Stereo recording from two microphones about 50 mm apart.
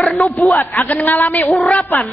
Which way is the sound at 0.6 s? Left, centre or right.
Left.